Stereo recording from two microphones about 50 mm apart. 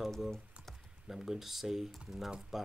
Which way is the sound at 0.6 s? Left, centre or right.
Right.